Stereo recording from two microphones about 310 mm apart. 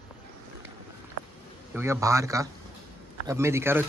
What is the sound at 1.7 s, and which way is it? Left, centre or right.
A man's voice, centre.